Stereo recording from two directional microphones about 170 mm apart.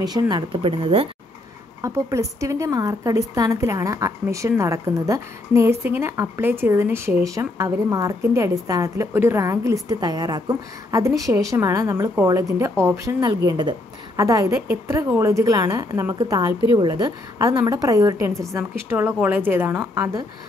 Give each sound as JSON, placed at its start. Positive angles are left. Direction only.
{"t": 0.0, "sound": "a woman's voice", "side_deg": -25}
{"t": 1.8, "sound": "a woman's voice", "side_deg": -20}